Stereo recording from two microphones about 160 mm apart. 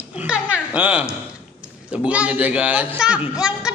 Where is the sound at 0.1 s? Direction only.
5° right (ahead or behind).